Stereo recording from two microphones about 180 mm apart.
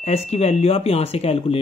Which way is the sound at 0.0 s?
35° left (ahead or behind).